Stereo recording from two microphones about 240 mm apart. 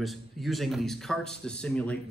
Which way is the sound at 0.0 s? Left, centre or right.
Centre.